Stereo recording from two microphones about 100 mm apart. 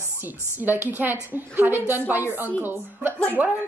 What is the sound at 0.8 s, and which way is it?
A woman's voice, 20° right (ahead or behind).